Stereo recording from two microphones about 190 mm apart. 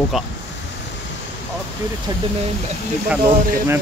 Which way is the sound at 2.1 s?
20° right (ahead or behind).